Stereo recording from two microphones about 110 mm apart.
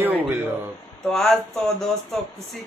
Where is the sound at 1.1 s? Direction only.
5° left (ahead or behind).